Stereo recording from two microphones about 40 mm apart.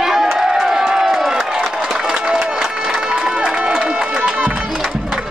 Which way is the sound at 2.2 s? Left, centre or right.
Centre.